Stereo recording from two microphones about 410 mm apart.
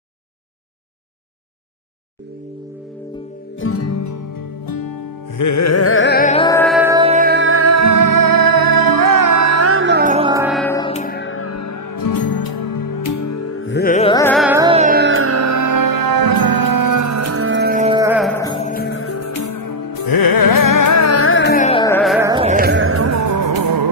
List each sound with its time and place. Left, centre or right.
3.5 s music: left; by 18.3 s centre
18.4 s music: centre; by 23.9 s right